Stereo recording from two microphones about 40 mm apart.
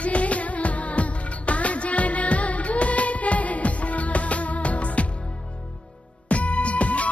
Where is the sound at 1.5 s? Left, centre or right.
Left.